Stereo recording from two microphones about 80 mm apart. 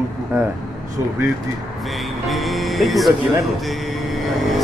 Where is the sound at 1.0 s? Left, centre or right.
Right.